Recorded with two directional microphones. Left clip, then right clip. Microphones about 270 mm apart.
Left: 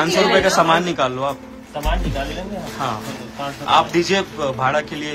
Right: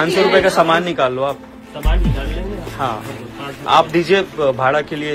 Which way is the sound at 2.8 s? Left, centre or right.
Centre.